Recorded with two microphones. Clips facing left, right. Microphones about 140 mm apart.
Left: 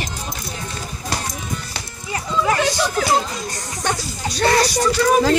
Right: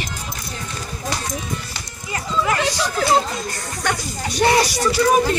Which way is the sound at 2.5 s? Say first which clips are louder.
Left 2 dB; centre (ahead or behind).